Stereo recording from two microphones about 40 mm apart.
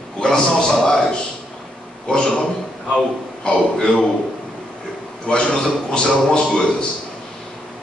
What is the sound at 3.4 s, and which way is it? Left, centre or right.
Speech, centre.